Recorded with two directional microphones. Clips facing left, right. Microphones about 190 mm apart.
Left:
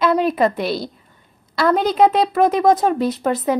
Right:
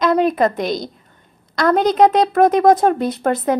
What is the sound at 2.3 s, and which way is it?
Speech, 45° right (ahead or behind).